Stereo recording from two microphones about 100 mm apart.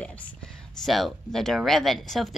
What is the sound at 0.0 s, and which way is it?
Speech, 10° left (ahead or behind).